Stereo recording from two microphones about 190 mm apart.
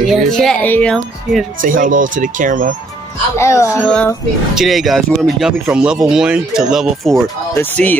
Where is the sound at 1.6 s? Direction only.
45° right (ahead or behind).